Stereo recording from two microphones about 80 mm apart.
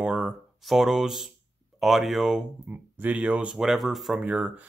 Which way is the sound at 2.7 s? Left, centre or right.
Centre.